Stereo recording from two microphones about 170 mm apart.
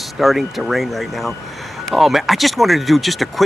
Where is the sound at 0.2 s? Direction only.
Centre (ahead or behind).